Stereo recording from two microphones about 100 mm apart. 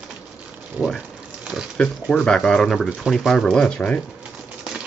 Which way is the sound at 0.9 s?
10° right (ahead or behind).